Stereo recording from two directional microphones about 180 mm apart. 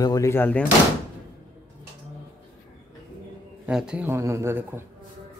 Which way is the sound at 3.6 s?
5° right (ahead or behind).